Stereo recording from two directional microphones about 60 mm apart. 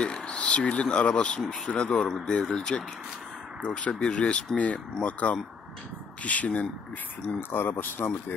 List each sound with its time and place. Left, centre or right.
0.0 s speech: centre
7.3 s speech: left